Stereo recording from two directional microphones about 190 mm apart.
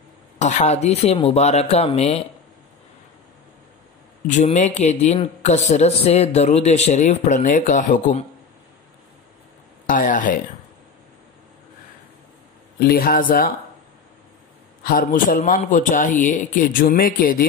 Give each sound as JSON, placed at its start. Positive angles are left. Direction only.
{"t": 0.4, "sound": "speech", "side_deg": 40}
{"t": 4.3, "sound": "speech", "side_deg": 40}
{"t": 9.8, "sound": "a man's voice", "side_deg": 45}
{"t": 12.7, "sound": "a man's voice", "side_deg": 50}
{"t": 14.8, "sound": "a man's voice", "side_deg": 50}